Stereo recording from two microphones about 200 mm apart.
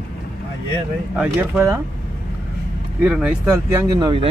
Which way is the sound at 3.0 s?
5° right (ahead or behind).